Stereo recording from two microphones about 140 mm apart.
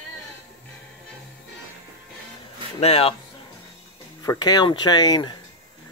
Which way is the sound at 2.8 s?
45° left (ahead or behind).